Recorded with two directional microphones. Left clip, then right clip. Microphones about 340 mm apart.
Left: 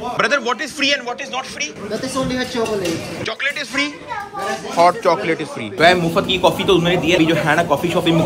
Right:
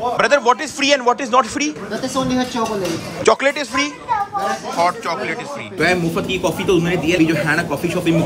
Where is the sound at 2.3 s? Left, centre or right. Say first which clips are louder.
Right 1 dB; right.